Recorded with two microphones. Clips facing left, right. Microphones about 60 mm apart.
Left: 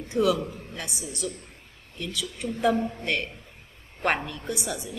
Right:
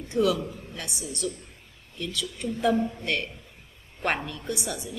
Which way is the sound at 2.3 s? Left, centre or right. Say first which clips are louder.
Left 1 dB; centre.